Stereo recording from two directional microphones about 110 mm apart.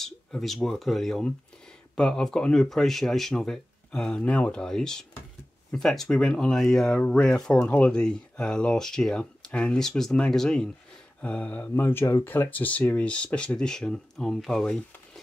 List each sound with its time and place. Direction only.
0.0 s speech: 5° left (ahead or behind)